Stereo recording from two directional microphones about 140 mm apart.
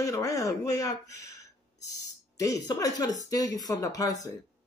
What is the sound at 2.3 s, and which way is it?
Speech, 25° left (ahead or behind).